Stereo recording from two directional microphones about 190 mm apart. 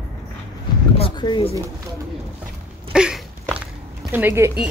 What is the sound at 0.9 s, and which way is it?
Speech, 25° left (ahead or behind).